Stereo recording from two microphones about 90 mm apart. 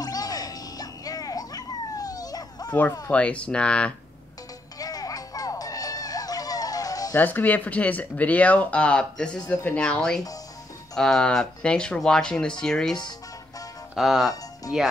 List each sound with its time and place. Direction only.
0.0 s music: 45° left (ahead or behind)
3.1 s speech: 15° left (ahead or behind)
4.7 s music: 45° left (ahead or behind)
7.2 s speech: 20° left (ahead or behind)
13.9 s speech: centre (ahead or behind)